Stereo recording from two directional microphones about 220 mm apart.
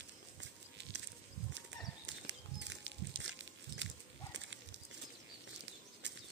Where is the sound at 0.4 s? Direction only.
55° right (ahead or behind).